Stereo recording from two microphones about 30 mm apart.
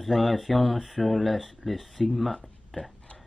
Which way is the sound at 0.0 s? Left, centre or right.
Centre.